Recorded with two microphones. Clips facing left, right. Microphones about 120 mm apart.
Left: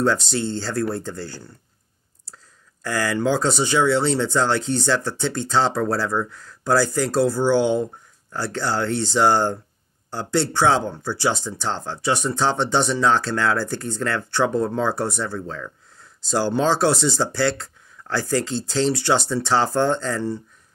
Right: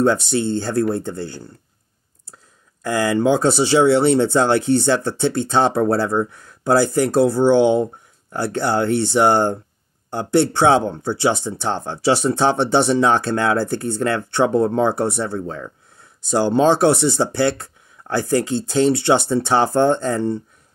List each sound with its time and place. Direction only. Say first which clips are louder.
0.0 s speech: right 4 dB; 20° right (ahead or behind)
2.8 s speech: right 5 dB; 20° right (ahead or behind)
4.6 s speech: right 7 dB; 60° right (ahead or behind)
4.8 s speech: right 4 dB; 20° right (ahead or behind)
12.7 s speech: right 5 dB; 60° right (ahead or behind)
13.1 s speech: right 3 dB; 20° right (ahead or behind)